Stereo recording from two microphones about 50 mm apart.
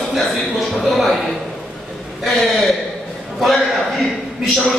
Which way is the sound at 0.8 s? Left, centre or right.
Centre.